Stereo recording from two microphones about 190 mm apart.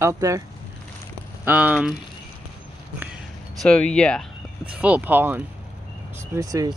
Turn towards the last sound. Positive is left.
turn(degrees=-20)  # may be behind; listen again after turning